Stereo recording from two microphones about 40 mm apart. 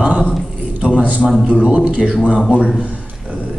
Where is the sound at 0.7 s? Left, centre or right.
Right.